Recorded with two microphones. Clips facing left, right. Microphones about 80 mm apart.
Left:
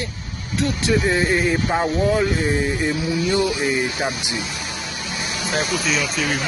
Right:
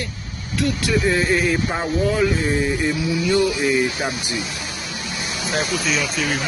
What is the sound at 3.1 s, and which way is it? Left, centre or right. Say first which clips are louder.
Speech: right 2 dB; left.